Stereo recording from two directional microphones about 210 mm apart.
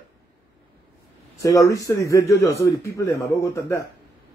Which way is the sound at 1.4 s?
15° left (ahead or behind).